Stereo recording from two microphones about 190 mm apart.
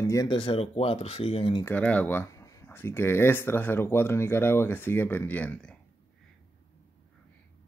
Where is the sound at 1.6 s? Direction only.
10° left (ahead or behind).